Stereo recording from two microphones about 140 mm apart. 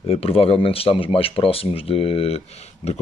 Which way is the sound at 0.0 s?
45° left (ahead or behind).